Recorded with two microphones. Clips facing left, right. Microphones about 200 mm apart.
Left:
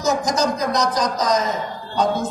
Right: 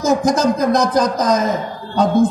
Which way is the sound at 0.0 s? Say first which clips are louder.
Right 5 dB; 55° right (ahead or behind).